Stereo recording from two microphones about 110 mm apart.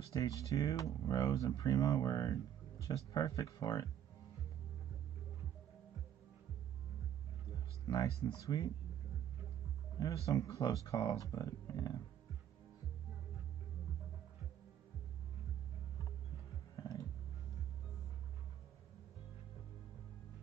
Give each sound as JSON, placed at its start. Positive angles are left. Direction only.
{"t": 0.1, "sound": "speech", "side_deg": 30}
{"t": 7.8, "sound": "speech", "side_deg": 40}
{"t": 9.9, "sound": "speech", "side_deg": 30}